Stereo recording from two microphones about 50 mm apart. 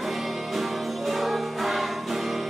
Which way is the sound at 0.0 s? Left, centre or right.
Centre.